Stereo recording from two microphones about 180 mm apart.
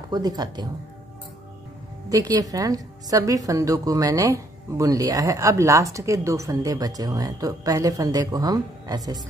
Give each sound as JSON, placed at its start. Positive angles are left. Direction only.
{"t": 0.1, "sound": "a woman's voice", "side_deg": -20}
{"t": 2.0, "sound": "a woman's voice", "side_deg": -20}